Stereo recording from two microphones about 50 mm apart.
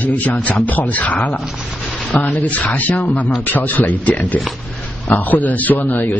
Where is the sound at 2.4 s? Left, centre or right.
Left.